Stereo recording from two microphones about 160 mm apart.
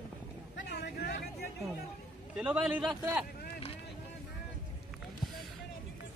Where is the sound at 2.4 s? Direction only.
5° right (ahead or behind).